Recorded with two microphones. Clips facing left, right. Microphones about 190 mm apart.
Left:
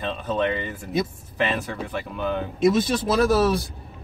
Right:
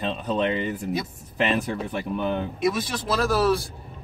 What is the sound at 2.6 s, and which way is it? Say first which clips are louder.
Speech: left 8 dB; 25° left (ahead or behind).